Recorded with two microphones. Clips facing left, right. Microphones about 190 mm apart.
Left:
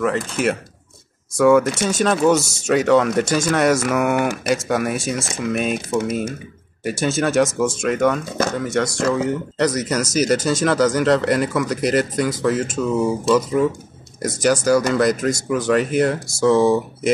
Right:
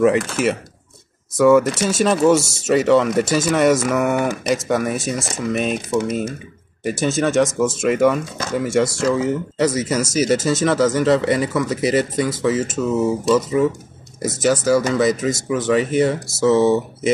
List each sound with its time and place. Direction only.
0.4 s speech: centre (ahead or behind)